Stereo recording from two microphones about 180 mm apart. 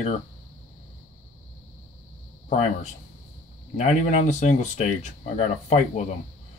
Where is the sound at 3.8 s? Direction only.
40° left (ahead or behind).